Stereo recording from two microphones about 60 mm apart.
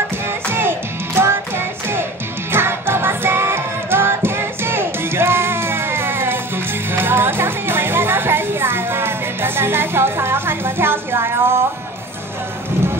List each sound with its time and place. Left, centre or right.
0.5 s music: right
2.5 s music: right